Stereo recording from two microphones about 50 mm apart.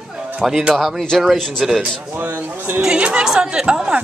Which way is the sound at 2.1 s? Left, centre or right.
Right.